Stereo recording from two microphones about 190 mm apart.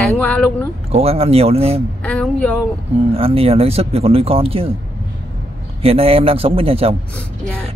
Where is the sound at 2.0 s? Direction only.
5° left (ahead or behind).